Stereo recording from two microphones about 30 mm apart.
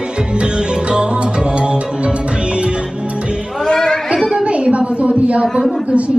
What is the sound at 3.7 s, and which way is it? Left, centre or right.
Children playing, left.